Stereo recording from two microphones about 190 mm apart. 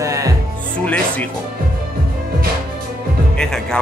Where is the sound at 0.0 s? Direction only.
15° right (ahead or behind).